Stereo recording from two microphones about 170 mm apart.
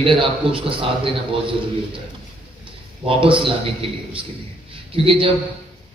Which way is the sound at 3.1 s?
30° right (ahead or behind).